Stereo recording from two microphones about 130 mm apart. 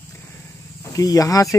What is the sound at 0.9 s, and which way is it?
Speech, 25° left (ahead or behind).